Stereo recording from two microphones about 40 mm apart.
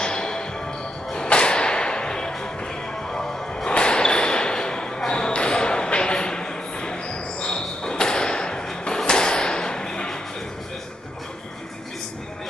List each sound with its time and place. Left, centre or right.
0.0 s music: centre
1.1 s whip: left
3.1 s music: centre
3.6 s basketball bounce: left